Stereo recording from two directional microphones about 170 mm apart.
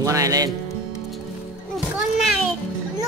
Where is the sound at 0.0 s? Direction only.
20° right (ahead or behind).